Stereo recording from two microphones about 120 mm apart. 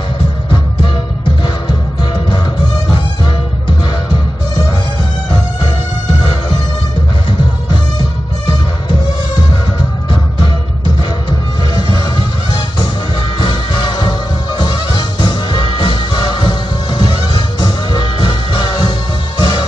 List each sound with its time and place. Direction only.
1.4 s music: 40° left (ahead or behind)
11.2 s music: 40° left (ahead or behind)
13.4 s music: 40° left (ahead or behind)